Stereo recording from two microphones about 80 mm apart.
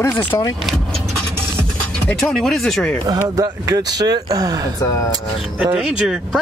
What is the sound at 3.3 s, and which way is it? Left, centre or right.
Speech, right.